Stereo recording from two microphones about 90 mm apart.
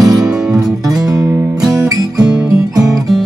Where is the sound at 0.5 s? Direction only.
40° right (ahead or behind).